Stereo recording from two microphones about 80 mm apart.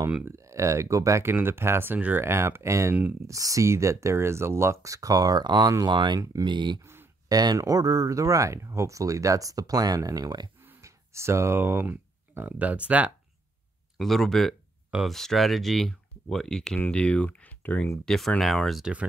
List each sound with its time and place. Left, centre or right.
0.2 s speech: right
1.3 s speech: right
5.9 s speech: right
6.8 s a sound: right
7.2 s speech: right
10.8 s speech: right; by 13.1 s centre
13.9 s speech: centre
18.0 s speech: centre